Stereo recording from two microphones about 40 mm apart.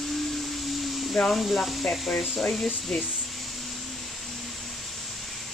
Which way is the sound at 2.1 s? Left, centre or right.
Left.